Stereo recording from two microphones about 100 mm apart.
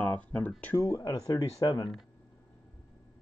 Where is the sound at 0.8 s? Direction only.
35° left (ahead or behind).